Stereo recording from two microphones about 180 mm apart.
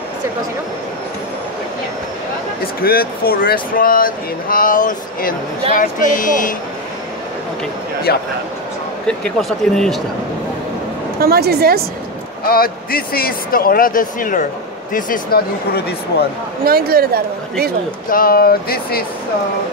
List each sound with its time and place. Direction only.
2.6 s a man's voice: 55° left (ahead or behind)
8.1 s speech: 60° left (ahead or behind)
9.0 s speech: 5° left (ahead or behind)
11.1 s speech: 60° right (ahead or behind)
12.4 s a man's voice: 55° left (ahead or behind)
16.6 s speech: 55° right (ahead or behind)
18.1 s speech: 55° left (ahead or behind)